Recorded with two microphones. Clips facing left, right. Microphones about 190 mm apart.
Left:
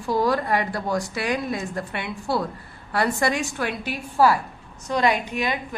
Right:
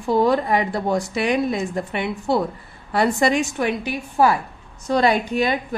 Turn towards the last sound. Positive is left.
turn(degrees=-35)  # may be behind; listen again after turning